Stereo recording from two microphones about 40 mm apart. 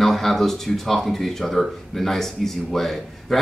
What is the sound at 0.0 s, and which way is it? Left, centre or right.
Speech, centre.